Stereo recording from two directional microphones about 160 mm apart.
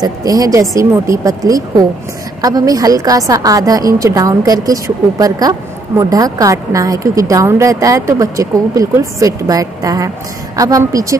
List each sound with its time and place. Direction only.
0.0 s a woman's voice: 20° right (ahead or behind)